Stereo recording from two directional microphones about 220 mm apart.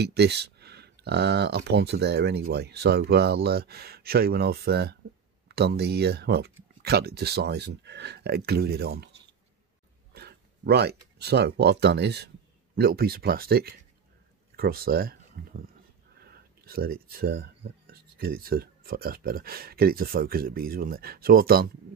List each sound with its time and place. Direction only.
0.0 s speech: 50° right (ahead or behind)
10.1 s speech: 50° right (ahead or behind)